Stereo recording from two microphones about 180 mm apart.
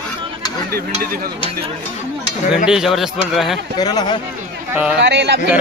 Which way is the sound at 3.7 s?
25° left (ahead or behind).